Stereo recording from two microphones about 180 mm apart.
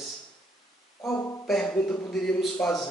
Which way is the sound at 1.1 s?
20° left (ahead or behind).